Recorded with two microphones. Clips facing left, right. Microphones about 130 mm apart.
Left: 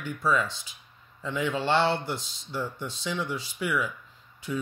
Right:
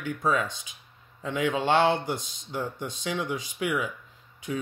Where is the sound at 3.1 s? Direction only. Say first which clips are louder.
Right 2 dB; 15° right (ahead or behind).